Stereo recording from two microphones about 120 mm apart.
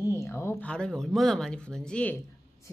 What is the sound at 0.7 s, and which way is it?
Speech, 10° left (ahead or behind).